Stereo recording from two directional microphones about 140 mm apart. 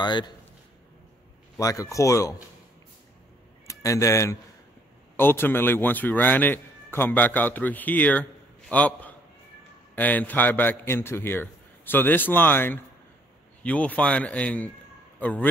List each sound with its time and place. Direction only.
0.0 s a man's voice: 30° left (ahead or behind)
1.6 s speech: 25° left (ahead or behind)
3.6 s a man's voice: 25° left (ahead or behind)